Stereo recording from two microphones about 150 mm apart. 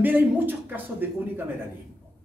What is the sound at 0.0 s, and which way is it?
Speech, 15° right (ahead or behind).